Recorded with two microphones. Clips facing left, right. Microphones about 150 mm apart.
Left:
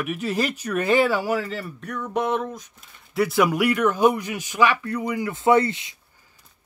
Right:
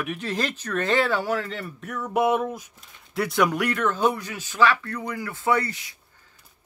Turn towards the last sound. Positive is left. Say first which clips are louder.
# left 6 dB
turn(degrees=25)  # may be behind; listen again after turning